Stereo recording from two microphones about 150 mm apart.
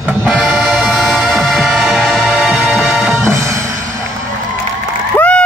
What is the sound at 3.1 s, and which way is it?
Music, 20° right (ahead or behind).